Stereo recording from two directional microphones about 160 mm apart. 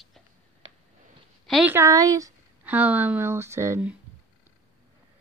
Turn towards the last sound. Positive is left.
turn(degrees=-15)  # may be behind; listen again after turning